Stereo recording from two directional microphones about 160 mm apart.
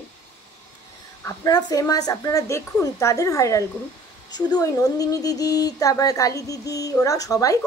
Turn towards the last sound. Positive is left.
turn(degrees=20)  # may be behind; listen again after turning